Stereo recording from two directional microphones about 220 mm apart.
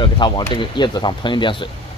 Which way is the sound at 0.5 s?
20° left (ahead or behind).